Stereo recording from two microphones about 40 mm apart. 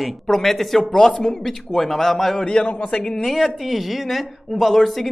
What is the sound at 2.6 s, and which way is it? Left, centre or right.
Speech, left.